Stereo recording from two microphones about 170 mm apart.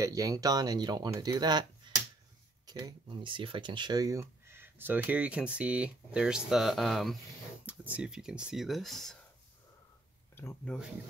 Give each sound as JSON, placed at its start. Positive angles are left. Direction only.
{"t": 0.0, "sound": "speech", "side_deg": -20}
{"t": 10.3, "sound": "speech", "side_deg": 15}